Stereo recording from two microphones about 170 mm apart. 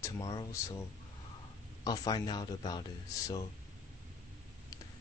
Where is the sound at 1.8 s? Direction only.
25° left (ahead or behind).